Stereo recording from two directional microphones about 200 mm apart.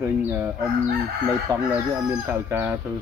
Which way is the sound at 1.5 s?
15° right (ahead or behind).